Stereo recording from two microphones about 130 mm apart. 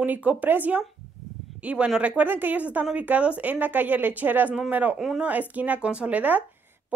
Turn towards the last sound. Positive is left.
turn(degrees=-10)  # may be behind; listen again after turning